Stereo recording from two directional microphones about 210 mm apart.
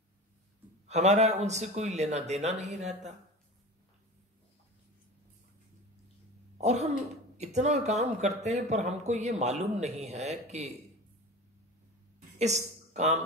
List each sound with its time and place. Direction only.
0.8 s speech: 35° right (ahead or behind)
6.6 s throat clearing: 30° right (ahead or behind)
7.3 s speech: 35° right (ahead or behind)
12.4 s a man's voice: 35° right (ahead or behind)